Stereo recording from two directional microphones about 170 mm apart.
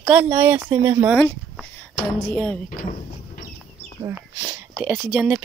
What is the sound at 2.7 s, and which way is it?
Speech, 50° left (ahead or behind).